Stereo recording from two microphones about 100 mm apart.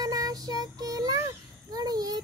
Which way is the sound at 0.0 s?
40° right (ahead or behind).